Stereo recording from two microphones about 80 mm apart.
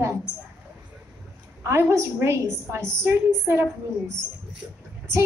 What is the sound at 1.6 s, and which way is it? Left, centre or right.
A woman's voice, right.